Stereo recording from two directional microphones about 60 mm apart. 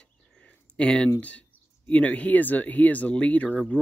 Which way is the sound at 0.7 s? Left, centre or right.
Centre.